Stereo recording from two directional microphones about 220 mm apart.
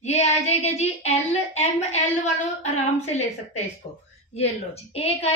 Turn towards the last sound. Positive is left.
turn(degrees=30)  # may be behind; listen again after turning